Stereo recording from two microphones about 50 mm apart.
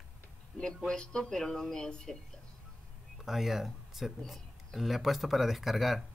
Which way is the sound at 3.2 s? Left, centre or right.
Centre.